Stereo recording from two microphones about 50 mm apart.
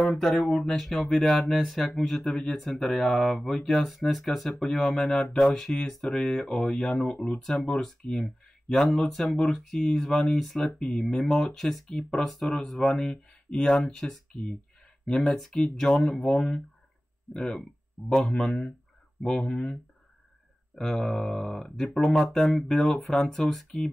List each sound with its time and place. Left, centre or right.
0.1 s speech: centre
9.1 s speech: centre
18.4 s speech: centre